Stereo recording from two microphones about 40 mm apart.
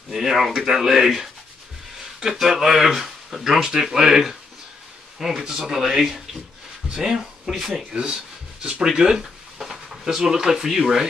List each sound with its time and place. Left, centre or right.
0.1 s speech: centre
5.2 s speech: centre
7.9 s speech: right